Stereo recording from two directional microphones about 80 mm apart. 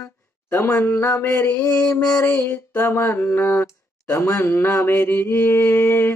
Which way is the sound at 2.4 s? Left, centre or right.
Left.